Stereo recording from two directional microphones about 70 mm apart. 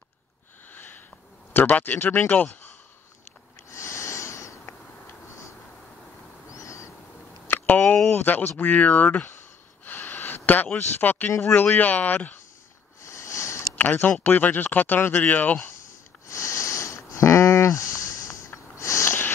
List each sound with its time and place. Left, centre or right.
0.7 s a sound: left
1.5 s speech: left
3.7 s snort: left
6.5 s owl: left
7.4 s a sound: left
8.1 s speech: left
9.8 s a sound: left
11.4 s speech: left
13.0 s a sound: left
13.7 s speech: left
16.3 s sniff: left
19.0 s sniff: left